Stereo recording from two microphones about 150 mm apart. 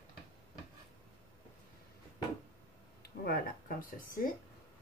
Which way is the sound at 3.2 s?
80° left.